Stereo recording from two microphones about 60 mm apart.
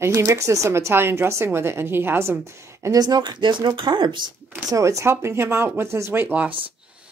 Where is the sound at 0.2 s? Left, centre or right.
Right.